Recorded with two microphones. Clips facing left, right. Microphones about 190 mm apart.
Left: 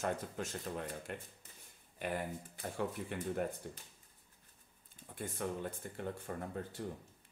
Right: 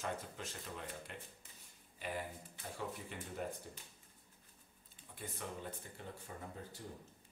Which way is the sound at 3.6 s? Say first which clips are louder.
Left 6 dB; 60° left (ahead or behind).